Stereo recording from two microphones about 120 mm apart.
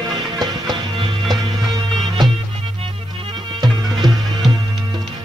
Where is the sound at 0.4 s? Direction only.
40° right (ahead or behind).